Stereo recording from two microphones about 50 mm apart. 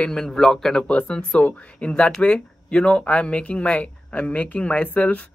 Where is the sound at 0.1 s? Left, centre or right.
Centre.